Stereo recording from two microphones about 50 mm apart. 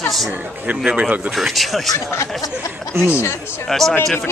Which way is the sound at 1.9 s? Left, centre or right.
Left.